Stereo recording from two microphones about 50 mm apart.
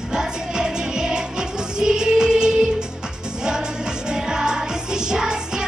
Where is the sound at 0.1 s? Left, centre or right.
Centre.